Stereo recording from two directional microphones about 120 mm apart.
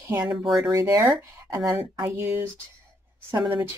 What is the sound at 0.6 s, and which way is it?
Speech, 30° right (ahead or behind).